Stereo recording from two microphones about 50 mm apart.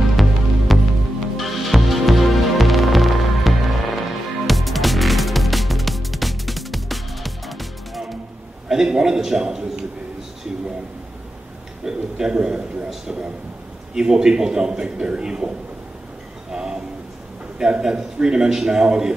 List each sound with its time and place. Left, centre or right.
0.1 s music: centre
8.6 s a man's voice: centre
11.8 s a sound: centre
13.9 s a man's voice: centre
16.5 s a sound: centre
17.6 s a man's voice: centre